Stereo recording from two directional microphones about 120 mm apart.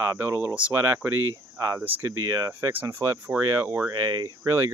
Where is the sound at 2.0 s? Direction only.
25° right (ahead or behind).